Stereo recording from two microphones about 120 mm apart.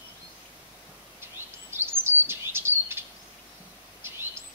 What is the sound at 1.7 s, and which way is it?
Bird vocalization, 20° right (ahead or behind).